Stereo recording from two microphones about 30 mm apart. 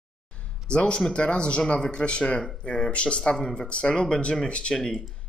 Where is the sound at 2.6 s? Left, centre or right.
Left.